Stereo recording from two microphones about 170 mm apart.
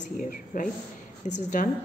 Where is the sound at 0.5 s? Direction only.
55° left (ahead or behind).